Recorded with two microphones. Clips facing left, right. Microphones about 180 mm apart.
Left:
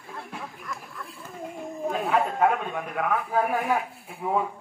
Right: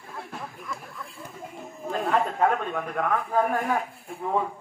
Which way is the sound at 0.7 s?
Centre (ahead or behind).